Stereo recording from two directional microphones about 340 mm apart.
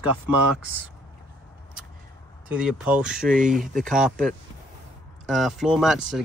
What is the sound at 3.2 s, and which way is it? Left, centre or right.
Speech, right.